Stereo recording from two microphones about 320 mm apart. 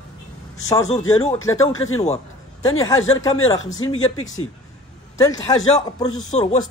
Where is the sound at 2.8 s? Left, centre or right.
Centre.